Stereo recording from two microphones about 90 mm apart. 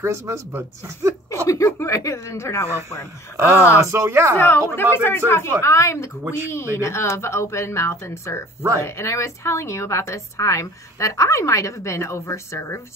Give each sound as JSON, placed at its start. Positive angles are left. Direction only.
{"t": 0.0, "sound": "speech", "side_deg": -30}
{"t": 1.3, "sound": "a woman's voice", "side_deg": 35}
{"t": 3.7, "sound": "speech", "side_deg": -30}
{"t": 4.4, "sound": "a woman's voice", "side_deg": 25}